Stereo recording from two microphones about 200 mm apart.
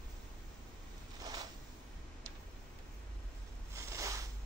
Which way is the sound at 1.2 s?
20° right (ahead or behind).